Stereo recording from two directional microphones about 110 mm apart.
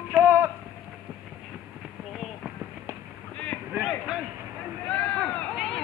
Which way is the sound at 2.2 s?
5° right (ahead or behind).